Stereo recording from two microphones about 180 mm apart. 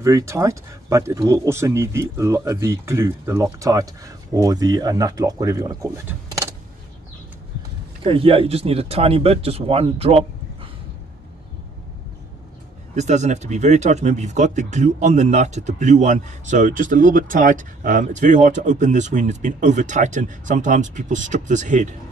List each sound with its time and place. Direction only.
0.0 s speech: 15° right (ahead or behind)
8.0 s speech: 30° right (ahead or behind)
12.9 s speech: 40° right (ahead or behind)